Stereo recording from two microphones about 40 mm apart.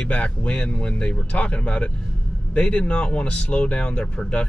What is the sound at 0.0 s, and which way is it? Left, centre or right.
Speech, left.